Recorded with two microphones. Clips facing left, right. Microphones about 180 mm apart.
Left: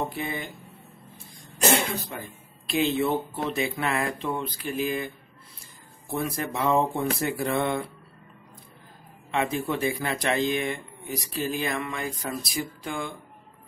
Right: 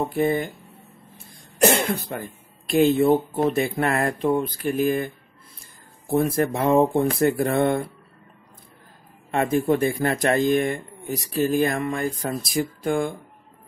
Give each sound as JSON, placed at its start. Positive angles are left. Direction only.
{"t": 0.1, "sound": "speech", "side_deg": -45}
{"t": 1.6, "sound": "speech", "side_deg": -55}
{"t": 2.7, "sound": "speech", "side_deg": -45}
{"t": 9.3, "sound": "speech", "side_deg": -50}